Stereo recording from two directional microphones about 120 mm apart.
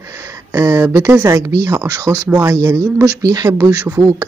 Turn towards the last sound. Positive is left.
turn(degrees=-25)  # may be behind; listen again after turning